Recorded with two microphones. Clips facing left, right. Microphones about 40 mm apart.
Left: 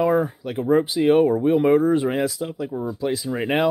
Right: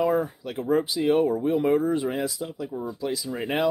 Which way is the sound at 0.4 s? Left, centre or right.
Left.